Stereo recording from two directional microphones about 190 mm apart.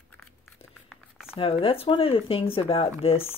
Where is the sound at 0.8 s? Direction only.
5° right (ahead or behind).